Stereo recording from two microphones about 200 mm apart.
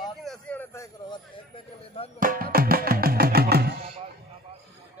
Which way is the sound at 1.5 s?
30° left (ahead or behind).